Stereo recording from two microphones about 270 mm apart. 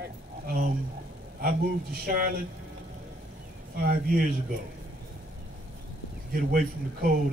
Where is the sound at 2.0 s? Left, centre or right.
Right.